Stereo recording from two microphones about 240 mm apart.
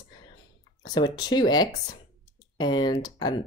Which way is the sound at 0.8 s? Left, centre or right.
Centre.